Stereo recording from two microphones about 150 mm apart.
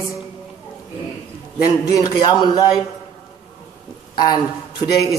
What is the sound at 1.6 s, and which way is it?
A man's voice, 25° left (ahead or behind).